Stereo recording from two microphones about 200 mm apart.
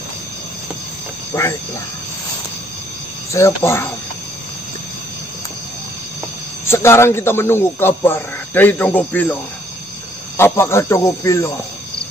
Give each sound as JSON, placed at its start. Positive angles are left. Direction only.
{"t": 1.3, "sound": "a man's voice", "side_deg": 15}
{"t": 3.3, "sound": "a man's voice", "side_deg": 15}
{"t": 6.6, "sound": "a man's voice", "side_deg": 10}